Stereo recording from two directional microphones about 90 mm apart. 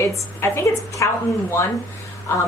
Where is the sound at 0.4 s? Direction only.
25° left (ahead or behind).